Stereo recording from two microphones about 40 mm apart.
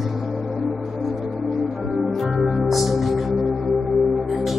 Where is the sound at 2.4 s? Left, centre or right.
Centre.